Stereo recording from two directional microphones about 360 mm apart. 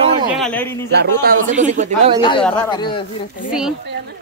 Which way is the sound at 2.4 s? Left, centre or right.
Centre.